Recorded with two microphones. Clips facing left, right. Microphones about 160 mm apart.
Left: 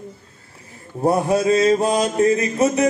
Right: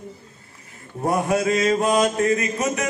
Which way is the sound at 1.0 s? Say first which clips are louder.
Left 3 dB; 30° left (ahead or behind).